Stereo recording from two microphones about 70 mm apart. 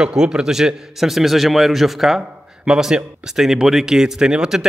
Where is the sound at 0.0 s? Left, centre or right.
Centre.